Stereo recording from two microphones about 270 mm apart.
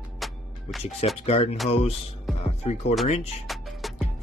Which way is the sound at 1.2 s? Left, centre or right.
Left.